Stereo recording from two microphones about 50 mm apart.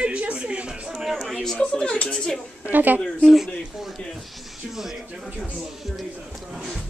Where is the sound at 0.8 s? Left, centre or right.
Centre.